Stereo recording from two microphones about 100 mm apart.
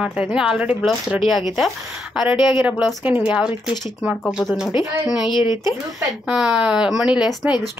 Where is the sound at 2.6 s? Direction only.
15° right (ahead or behind).